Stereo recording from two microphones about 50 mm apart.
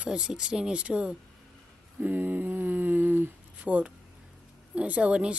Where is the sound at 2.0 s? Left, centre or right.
Right.